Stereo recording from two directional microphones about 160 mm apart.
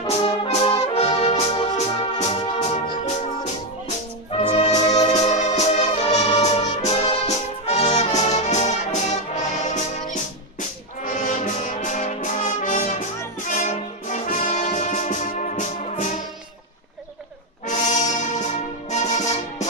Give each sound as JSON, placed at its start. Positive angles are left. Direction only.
{"t": 0.1, "sound": "brass instrument", "side_deg": 35}
{"t": 2.1, "sound": "organ", "side_deg": 45}
{"t": 4.3, "sound": "music", "side_deg": 40}
{"t": 11.1, "sound": "brass instrument", "side_deg": 50}
{"t": 17.6, "sound": "brass instrument", "side_deg": 50}
{"t": 18.9, "sound": "music", "side_deg": 45}